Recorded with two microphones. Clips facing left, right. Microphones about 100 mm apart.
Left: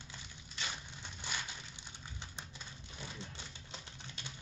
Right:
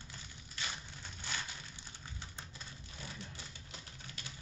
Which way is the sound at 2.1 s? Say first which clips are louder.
Left 1 dB; 20° left (ahead or behind).